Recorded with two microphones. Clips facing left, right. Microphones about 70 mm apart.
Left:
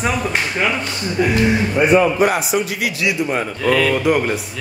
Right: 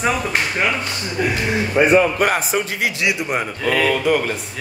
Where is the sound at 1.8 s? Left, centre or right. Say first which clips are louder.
Even; right.